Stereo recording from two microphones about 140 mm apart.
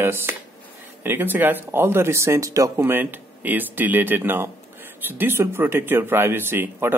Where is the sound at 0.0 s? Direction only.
15° right (ahead or behind).